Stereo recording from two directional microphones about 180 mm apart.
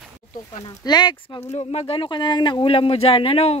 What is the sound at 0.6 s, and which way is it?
Speech, 25° left (ahead or behind).